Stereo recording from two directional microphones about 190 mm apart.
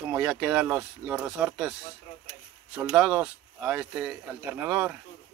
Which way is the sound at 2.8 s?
5° right (ahead or behind).